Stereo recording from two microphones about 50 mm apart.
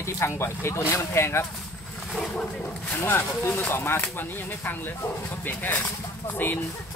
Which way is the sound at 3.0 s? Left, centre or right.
Left.